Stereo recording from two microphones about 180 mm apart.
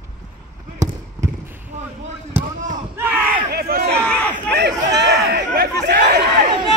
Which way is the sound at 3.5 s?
55° right (ahead or behind).